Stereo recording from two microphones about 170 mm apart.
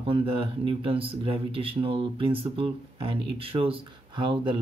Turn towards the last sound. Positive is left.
turn(degrees=-30)  # may be behind; listen again after turning